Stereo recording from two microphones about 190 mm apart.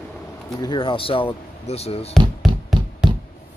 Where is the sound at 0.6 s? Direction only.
25° left (ahead or behind).